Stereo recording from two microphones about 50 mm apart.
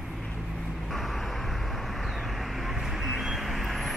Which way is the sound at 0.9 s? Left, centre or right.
Centre.